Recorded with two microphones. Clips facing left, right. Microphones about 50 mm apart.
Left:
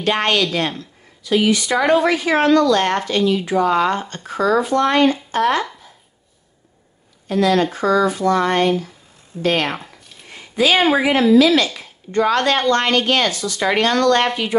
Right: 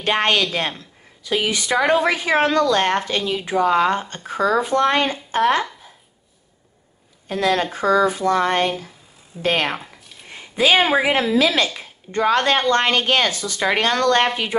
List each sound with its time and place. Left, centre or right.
0.0 s speech: right
7.2 s speech: right
10.3 s a sound: right
11.0 s speech: right